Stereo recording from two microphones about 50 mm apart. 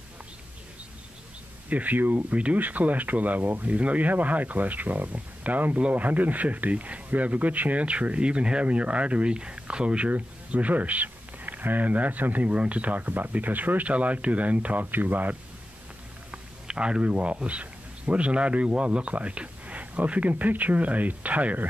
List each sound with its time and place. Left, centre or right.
1.7 s speech: right
16.3 s speech: right